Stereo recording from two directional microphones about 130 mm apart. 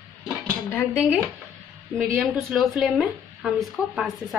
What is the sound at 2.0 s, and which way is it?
Speech, centre (ahead or behind).